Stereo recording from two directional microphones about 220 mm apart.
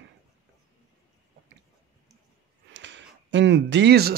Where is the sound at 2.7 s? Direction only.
55° right (ahead or behind).